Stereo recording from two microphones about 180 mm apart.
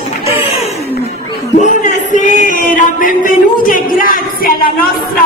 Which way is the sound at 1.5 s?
45° left (ahead or behind).